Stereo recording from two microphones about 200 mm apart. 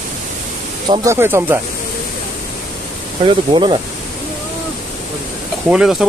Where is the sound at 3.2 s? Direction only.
25° right (ahead or behind).